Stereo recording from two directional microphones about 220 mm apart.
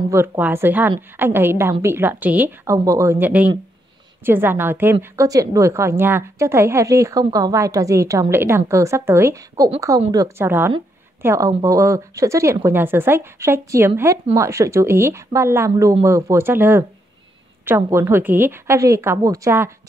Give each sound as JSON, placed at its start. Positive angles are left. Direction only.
{"t": 0.1, "sound": "a woman's voice", "side_deg": -10}